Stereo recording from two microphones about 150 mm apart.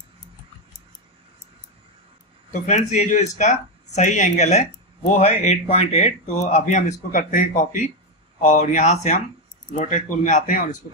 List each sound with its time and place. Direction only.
2.6 s speech: 50° left (ahead or behind)
7.0 s speech: 65° left (ahead or behind)